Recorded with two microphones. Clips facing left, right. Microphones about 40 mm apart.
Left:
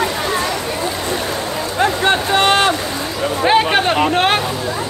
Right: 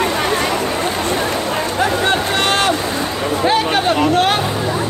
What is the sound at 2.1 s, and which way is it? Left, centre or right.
Vehicle, left.